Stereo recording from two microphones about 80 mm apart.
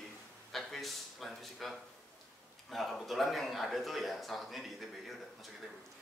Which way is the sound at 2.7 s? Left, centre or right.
Centre.